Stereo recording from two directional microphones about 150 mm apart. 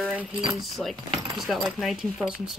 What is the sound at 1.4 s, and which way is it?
Speech, centre (ahead or behind).